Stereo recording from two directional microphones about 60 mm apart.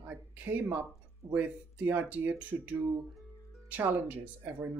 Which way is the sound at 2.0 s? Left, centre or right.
Right.